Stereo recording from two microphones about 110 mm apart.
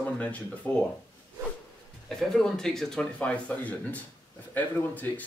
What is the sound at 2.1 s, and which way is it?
Speech, 5° left (ahead or behind).